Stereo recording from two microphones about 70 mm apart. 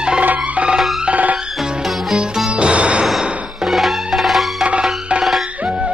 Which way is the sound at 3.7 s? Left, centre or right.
Centre.